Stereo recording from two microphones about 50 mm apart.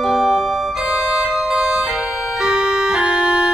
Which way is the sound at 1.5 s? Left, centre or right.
Centre.